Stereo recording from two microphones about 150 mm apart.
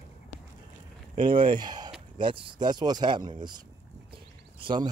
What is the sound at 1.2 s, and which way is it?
Speech, 35° right (ahead or behind).